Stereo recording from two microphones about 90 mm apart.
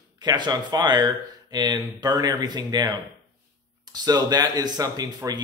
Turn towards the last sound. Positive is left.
turn(degrees=-45)  # may be behind; listen again after turning